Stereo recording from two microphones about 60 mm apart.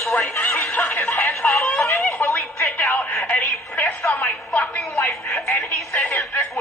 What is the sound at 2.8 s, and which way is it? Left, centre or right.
A woman's voice, left.